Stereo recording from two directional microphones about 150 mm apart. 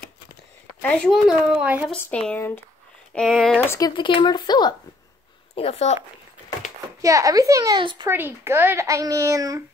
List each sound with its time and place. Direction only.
0.8 s speech: 5° left (ahead or behind)
2.0 s speech: 10° left (ahead or behind)
3.6 s speech: 20° left (ahead or behind)
3.9 s speech: 35° left (ahead or behind)
5.5 s speech: 45° left (ahead or behind)
7.0 s a child's voice: 20° right (ahead or behind)
8.1 s a child's voice: 15° right (ahead or behind)